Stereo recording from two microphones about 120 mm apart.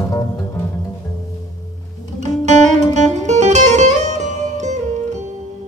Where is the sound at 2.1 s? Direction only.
75° right (ahead or behind).